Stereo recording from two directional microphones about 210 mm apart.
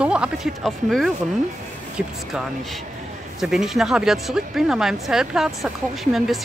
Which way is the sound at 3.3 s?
Centre (ahead or behind).